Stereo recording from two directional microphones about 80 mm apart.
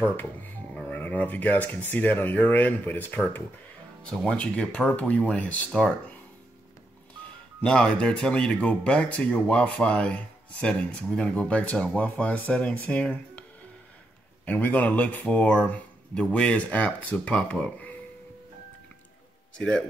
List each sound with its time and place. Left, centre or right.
0.0 s speech: left
4.1 s speech: centre
7.6 s speech: centre
19.5 s a man's voice: centre